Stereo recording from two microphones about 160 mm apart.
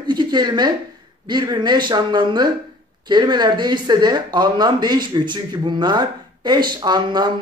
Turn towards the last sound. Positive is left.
turn(degrees=-25)  # may be behind; listen again after turning